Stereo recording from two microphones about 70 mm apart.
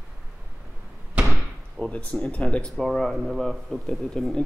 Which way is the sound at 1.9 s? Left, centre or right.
Centre.